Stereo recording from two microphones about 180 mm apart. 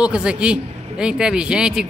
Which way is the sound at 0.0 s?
5° right (ahead or behind).